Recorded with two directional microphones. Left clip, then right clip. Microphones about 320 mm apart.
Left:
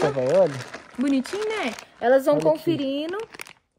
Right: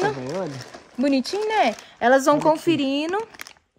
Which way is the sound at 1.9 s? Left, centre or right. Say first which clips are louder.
Right 1 dB; right.